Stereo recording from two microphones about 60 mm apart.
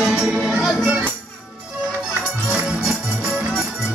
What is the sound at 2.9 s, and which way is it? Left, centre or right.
Music, centre.